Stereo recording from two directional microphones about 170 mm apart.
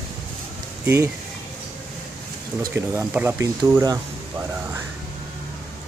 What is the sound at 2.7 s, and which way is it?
Speech, 10° right (ahead or behind).